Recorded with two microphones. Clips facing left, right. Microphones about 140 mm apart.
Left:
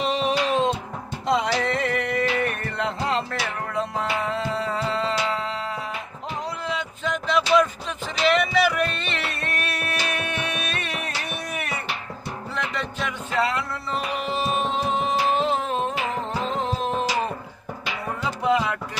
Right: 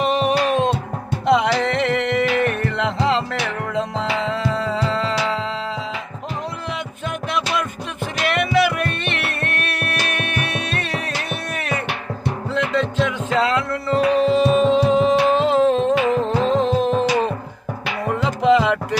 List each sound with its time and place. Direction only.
0.0 s music: 55° right (ahead or behind)
1.2 s music: 70° right (ahead or behind); by 5.4 s 90° right
6.7 s music: 55° right (ahead or behind)
11.5 s music: 90° right